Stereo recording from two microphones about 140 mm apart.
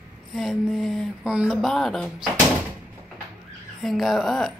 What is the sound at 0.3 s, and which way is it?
Speech, centre (ahead or behind).